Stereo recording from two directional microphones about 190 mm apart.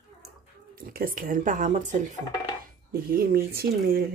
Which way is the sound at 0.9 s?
50° right (ahead or behind).